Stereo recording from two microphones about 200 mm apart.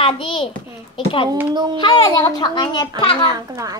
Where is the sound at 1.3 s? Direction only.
10° right (ahead or behind).